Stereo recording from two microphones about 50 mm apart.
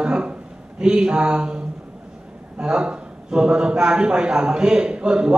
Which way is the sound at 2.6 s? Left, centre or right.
Centre.